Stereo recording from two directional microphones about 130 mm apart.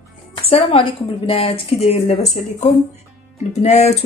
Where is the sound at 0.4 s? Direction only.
50° left (ahead or behind).